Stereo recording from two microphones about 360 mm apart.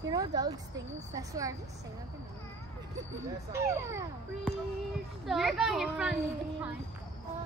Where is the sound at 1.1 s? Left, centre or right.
Centre.